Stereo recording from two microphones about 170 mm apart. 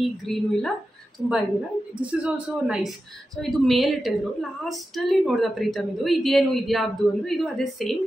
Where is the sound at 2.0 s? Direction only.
5° right (ahead or behind).